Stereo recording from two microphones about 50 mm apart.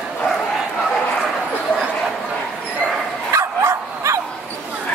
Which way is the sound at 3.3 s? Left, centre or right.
Right.